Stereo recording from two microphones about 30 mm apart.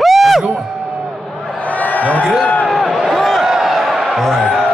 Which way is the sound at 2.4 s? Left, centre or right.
Left.